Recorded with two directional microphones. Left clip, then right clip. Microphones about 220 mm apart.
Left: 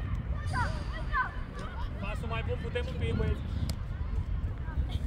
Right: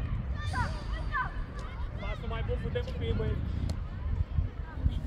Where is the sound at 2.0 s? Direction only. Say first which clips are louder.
Left 1 dB; 55° left (ahead or behind).